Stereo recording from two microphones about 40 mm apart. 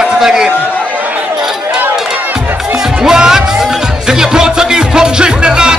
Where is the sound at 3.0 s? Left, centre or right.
Centre.